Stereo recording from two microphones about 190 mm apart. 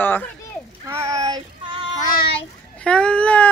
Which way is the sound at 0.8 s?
15° right (ahead or behind).